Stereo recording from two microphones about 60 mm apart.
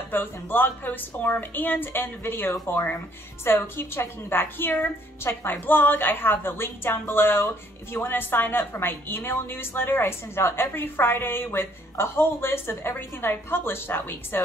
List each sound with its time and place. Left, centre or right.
0.1 s a woman's voice: left